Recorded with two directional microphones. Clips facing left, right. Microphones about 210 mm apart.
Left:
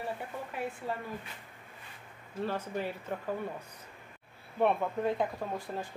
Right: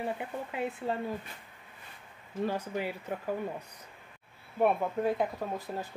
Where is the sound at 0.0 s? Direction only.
20° right (ahead or behind).